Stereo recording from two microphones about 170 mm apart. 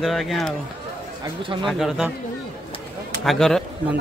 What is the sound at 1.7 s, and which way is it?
Speech, centre (ahead or behind).